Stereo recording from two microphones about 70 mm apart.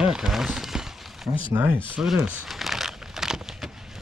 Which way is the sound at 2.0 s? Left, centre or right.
Centre.